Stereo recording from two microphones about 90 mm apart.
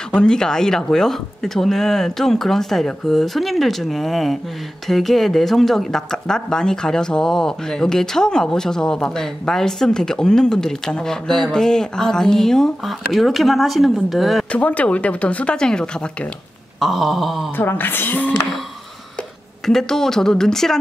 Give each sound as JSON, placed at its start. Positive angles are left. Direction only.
{"t": 0.1, "sound": "speech", "side_deg": 10}
{"t": 14.5, "sound": "speech", "side_deg": 15}
{"t": 17.6, "sound": "speech", "side_deg": 25}
{"t": 19.6, "sound": "speech", "side_deg": 5}